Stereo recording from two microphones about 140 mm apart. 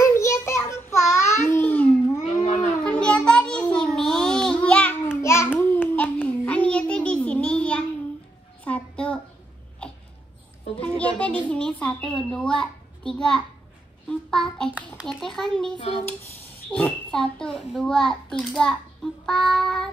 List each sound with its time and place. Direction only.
0.0 s child singing: 20° left (ahead or behind)
2.4 s a sound: 50° left (ahead or behind)
2.8 s child singing: 5° left (ahead or behind)
8.6 s a sound: 10° left (ahead or behind)
10.8 s a sound: 10° left (ahead or behind)
14.0 s a child's voice: 5° left (ahead or behind)
14.7 s a child's voice: 10° right (ahead or behind)
15.0 s a child's voice: 5° left (ahead or behind)
16.7 s a child's voice: 10° left (ahead or behind)